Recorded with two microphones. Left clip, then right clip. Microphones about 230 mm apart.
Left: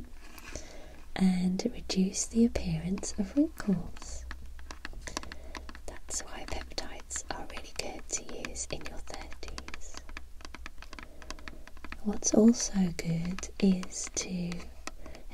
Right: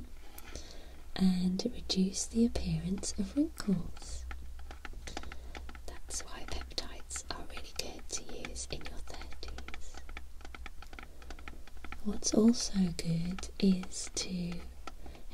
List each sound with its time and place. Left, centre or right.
1.1 s speech: centre
5.1 s typing: left
5.9 s whispering: centre
8.9 s a sound: centre
10.6 s typing: left
12.2 s speech: centre
13.2 s speech: centre
13.7 s speech: centre